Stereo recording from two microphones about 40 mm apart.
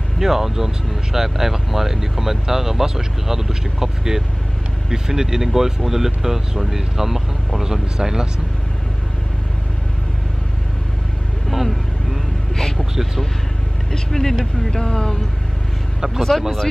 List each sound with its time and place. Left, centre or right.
0.2 s speech: centre
11.5 s vehicle: centre
12.7 s speech: centre
13.9 s speech: centre
16.2 s speech: centre